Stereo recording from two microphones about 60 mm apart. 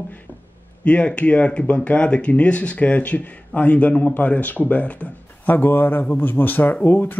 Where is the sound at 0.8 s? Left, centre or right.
Centre.